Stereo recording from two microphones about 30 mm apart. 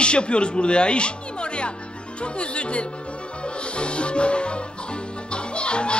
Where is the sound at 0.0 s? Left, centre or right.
Left.